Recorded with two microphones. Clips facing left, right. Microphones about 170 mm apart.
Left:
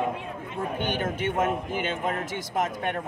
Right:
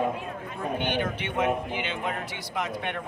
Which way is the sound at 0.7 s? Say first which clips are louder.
Right 1 dB; 45° left (ahead or behind).